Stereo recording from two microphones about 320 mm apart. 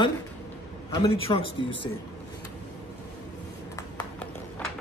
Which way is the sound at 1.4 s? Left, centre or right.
Right.